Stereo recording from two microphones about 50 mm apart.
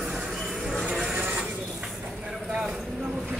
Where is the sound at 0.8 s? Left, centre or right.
Centre.